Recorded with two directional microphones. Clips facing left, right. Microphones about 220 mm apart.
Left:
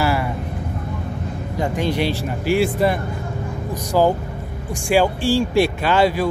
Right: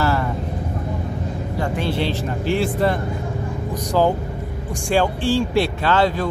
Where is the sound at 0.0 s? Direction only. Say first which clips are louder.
Even; 10° left (ahead or behind).